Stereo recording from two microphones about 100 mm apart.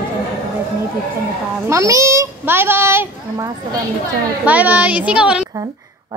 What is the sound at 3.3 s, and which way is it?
Speech, 35° right (ahead or behind).